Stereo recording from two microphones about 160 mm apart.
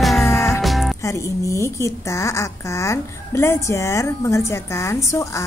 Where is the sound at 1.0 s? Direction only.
20° left (ahead or behind).